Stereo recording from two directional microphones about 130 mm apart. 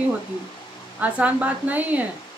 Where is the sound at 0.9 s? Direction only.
10° right (ahead or behind).